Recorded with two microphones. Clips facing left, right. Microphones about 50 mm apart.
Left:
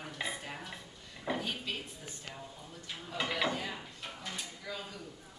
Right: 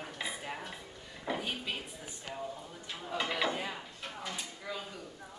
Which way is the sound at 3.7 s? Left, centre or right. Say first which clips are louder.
Right 1 dB; centre.